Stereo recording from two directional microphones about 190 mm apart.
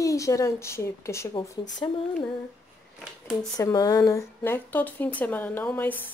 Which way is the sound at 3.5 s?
20° left (ahead or behind).